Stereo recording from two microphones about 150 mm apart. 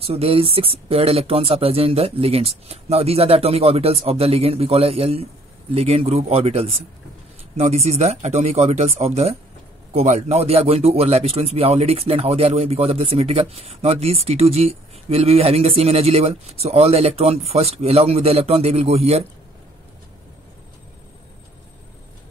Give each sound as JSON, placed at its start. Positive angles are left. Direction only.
{"t": 0.0, "sound": "speech", "side_deg": -40}